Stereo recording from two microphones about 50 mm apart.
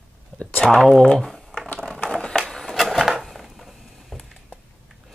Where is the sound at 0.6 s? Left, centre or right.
Centre.